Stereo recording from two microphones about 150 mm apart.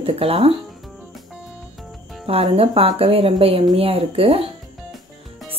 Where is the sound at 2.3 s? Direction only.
40° right (ahead or behind).